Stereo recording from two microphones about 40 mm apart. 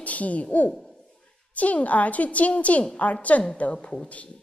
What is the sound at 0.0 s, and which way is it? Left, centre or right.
A woman's voice, left.